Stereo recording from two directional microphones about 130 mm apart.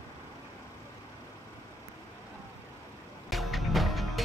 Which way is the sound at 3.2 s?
Centre (ahead or behind).